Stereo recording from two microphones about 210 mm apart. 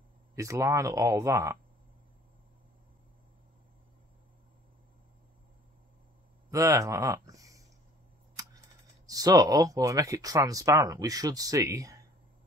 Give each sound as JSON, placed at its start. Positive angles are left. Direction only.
{"t": 0.4, "sound": "speech", "side_deg": -15}
{"t": 6.5, "sound": "speech", "side_deg": -15}